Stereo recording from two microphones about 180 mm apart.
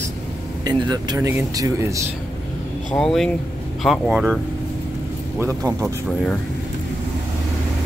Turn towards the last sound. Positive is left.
turn(degrees=-15)  # may be behind; listen again after turning